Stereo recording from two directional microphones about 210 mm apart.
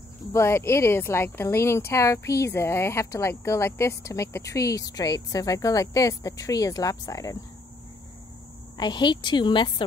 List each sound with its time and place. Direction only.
0.3 s speech: 15° left (ahead or behind)
8.7 s a woman's voice: 20° left (ahead or behind)